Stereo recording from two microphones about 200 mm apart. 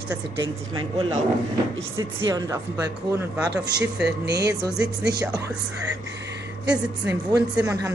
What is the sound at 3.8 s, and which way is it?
Speech, 60° right (ahead or behind).